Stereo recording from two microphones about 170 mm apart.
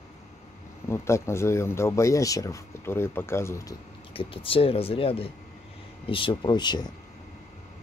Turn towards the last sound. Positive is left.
turn(degrees=25)  # may be behind; listen again after turning